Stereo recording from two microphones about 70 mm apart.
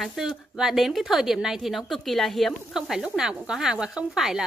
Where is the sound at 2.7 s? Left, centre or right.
Centre.